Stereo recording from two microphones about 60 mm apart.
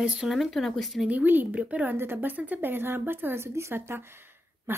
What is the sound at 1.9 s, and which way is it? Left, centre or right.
A woman's voice, right.